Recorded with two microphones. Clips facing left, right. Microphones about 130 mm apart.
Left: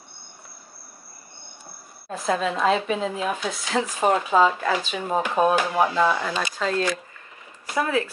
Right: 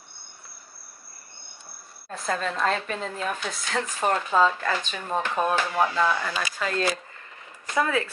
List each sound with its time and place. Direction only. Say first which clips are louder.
2.0 s speech: left 4 dB; 5° left (ahead or behind)
7.7 s speech: left 1 dB; 20° left (ahead or behind)